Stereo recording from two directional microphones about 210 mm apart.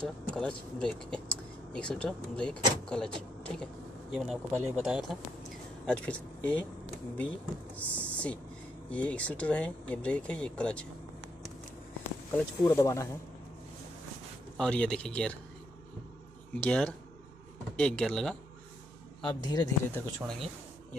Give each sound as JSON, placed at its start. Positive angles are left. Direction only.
{"t": 0.0, "sound": "speech", "side_deg": 5}
{"t": 12.6, "sound": "speech", "side_deg": 15}
{"t": 14.6, "sound": "speech", "side_deg": 5}
{"t": 16.5, "sound": "speech", "side_deg": 5}
{"t": 19.2, "sound": "speech", "side_deg": 20}
{"t": 19.9, "sound": "speech", "side_deg": 5}